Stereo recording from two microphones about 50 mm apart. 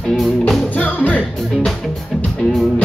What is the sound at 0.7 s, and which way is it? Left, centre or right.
Music, left.